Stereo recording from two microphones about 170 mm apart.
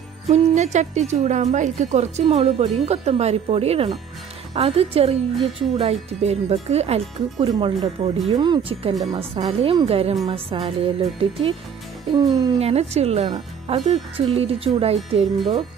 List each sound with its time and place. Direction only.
0.3 s a woman's voice: 40° right (ahead or behind)
7.3 s a woman's voice: 25° right (ahead or behind)
12.1 s speech: 20° right (ahead or behind)
12.5 s a woman's voice: 40° right (ahead or behind)